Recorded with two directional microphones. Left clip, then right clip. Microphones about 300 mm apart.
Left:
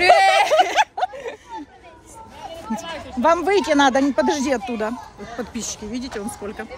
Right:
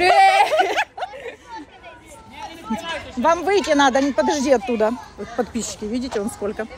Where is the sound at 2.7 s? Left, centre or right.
Left.